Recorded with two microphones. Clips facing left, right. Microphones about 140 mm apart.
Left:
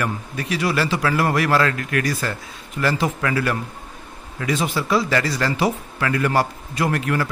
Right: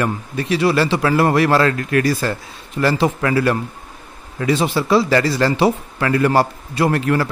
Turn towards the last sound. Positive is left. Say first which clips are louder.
# right 5 dB
turn(degrees=-30)  # may be behind; listen again after turning